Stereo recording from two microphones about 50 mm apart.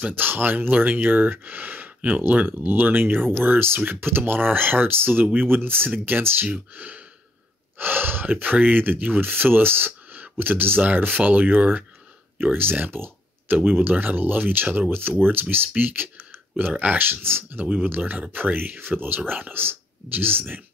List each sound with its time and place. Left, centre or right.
0.1 s speech: right
15.8 s typing: right
16.9 s speech: right